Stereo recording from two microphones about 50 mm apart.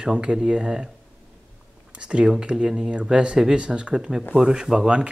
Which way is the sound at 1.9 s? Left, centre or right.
Right.